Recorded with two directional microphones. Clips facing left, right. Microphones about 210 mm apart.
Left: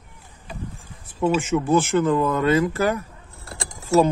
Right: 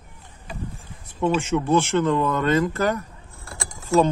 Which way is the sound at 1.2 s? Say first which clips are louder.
Left 1 dB; 5° left (ahead or behind).